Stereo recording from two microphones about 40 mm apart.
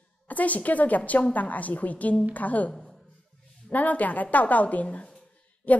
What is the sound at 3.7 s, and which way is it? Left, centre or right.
A woman's voice, left.